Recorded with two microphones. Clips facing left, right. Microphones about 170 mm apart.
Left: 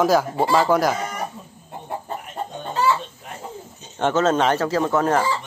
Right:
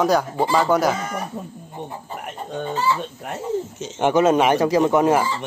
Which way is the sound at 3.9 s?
15° right (ahead or behind).